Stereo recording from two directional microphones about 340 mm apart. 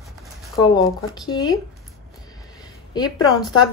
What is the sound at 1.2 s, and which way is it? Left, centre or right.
Speech, centre.